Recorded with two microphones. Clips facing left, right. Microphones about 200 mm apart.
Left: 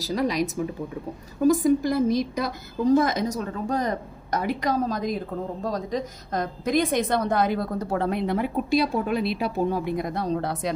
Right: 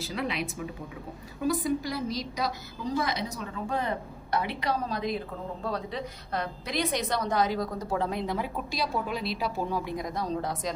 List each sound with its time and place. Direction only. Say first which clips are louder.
0.0 s a woman's voice: left 8 dB; 40° left (ahead or behind); by 10.7 s 65° left (ahead or behind)